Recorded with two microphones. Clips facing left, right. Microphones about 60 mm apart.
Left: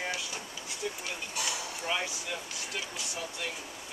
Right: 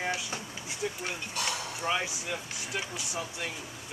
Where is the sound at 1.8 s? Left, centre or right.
Centre.